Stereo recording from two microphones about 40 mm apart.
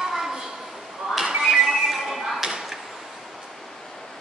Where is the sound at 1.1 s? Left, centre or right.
Centre.